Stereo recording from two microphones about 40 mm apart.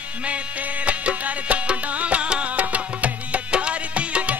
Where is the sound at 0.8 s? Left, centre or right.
Right.